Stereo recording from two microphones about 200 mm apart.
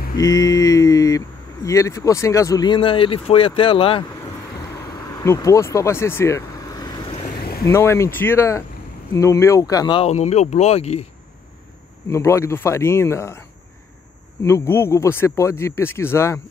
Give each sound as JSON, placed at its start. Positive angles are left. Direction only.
{"t": 0.2, "sound": "speech", "side_deg": 15}
{"t": 5.2, "sound": "speech", "side_deg": 15}
{"t": 7.2, "sound": "vehicle", "side_deg": 50}
{"t": 7.6, "sound": "speech", "side_deg": 15}
{"t": 10.0, "sound": "speech", "side_deg": 35}
{"t": 12.1, "sound": "speech", "side_deg": 15}
{"t": 14.4, "sound": "speech", "side_deg": 10}